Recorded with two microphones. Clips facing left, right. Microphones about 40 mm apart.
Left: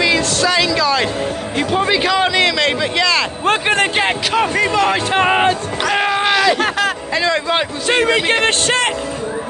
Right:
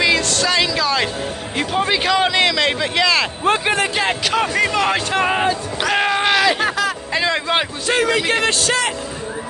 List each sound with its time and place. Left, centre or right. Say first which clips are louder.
0.0 s a sound: left 2 dB; centre
1.6 s a man's voice: left 3 dB; centre
3.4 s speech: left 3 dB; left
4.3 s a man's voice: left 2 dB; centre
5.3 s music: left 4 dB; left
5.9 s a man's voice: left 1 dB; centre
7.9 s speech: left 2 dB; left